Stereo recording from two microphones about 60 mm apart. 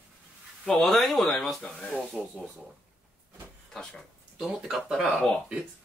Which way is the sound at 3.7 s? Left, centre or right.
Centre.